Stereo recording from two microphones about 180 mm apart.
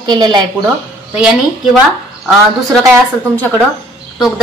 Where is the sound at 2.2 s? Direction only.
Centre (ahead or behind).